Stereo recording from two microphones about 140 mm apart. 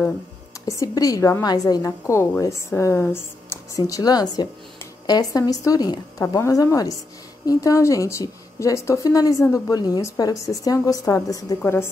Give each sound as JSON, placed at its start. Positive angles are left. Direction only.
{"t": 0.7, "sound": "a woman's voice", "side_deg": 25}